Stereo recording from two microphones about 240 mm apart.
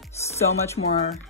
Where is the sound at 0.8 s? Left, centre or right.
Left.